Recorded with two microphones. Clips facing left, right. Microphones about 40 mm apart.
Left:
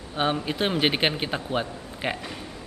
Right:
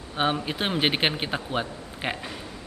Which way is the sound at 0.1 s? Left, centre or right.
Centre.